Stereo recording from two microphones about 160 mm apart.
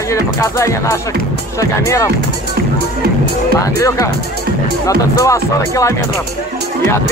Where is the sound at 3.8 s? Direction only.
20° left (ahead or behind).